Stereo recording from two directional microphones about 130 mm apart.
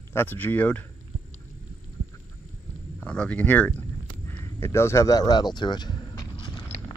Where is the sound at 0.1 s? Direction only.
15° left (ahead or behind).